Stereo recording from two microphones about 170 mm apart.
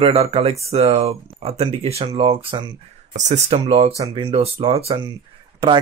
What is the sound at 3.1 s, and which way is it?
Speech, 45° right (ahead or behind).